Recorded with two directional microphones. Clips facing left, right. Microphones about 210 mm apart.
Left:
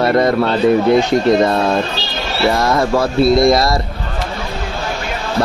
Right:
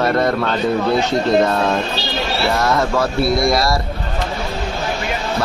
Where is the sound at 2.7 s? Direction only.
15° left (ahead or behind).